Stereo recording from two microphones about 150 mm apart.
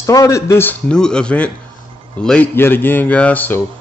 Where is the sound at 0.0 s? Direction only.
20° left (ahead or behind).